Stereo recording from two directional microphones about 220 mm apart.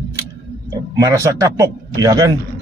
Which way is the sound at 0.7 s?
15° right (ahead or behind).